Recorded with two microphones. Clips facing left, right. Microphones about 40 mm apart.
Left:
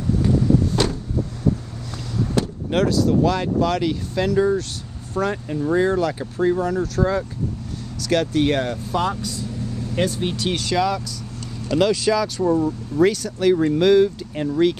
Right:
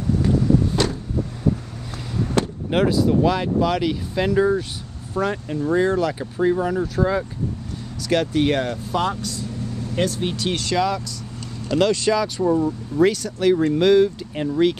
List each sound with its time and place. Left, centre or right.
2.4 s speech: centre
5.1 s speech: centre
9.9 s speech: centre